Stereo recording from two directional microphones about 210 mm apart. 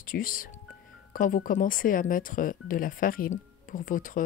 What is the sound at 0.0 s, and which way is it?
A woman's voice, 40° left (ahead or behind).